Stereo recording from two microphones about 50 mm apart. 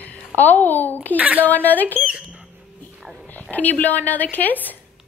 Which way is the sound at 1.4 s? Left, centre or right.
Left.